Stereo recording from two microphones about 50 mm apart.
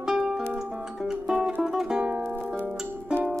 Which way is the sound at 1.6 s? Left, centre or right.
Centre.